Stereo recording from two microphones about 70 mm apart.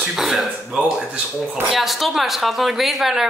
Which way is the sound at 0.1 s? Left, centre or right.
Centre.